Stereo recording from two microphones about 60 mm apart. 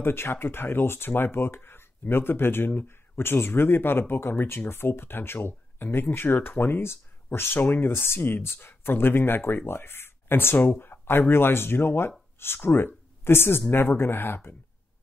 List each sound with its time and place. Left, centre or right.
0.0 s speech: left